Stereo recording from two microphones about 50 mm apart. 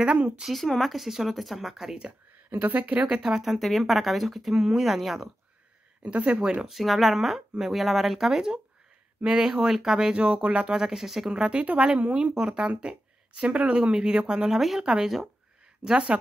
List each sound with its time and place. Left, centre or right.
0.5 s speech: centre
2.5 s speech: right; by 3.5 s centre
3.5 s speech: centre
6.0 s speech: right
6.7 s speech: centre
10.2 s speech: right
14.5 s speech: centre